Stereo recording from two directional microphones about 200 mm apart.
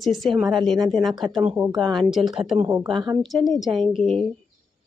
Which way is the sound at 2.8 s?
25° right (ahead or behind).